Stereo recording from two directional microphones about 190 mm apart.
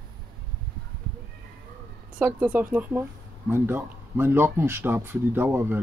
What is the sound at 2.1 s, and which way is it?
Speech, 10° right (ahead or behind).